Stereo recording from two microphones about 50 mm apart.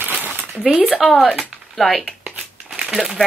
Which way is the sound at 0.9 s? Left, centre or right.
Centre.